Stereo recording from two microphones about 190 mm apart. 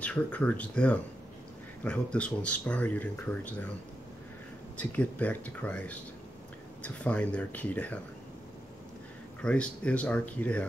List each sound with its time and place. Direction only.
0.0 s speech: 5° left (ahead or behind)
4.7 s speech: 10° left (ahead or behind)
9.4 s speech: 5° left (ahead or behind)